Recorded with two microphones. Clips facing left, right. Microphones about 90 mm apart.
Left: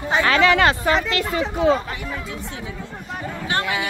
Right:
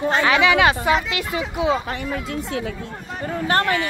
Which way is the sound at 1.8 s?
50° right (ahead or behind).